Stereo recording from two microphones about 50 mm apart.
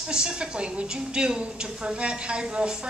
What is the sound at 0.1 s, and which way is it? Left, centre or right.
A woman's voice, centre.